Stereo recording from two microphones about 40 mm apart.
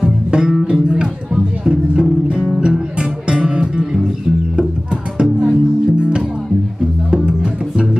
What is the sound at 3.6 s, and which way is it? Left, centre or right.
Music, centre.